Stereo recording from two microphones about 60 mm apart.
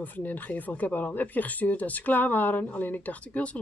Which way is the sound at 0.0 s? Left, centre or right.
Left.